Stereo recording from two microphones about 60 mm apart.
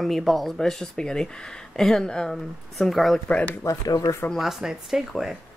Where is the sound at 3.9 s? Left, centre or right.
Left.